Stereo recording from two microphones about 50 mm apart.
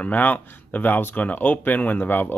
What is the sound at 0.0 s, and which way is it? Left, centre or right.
Speech, left.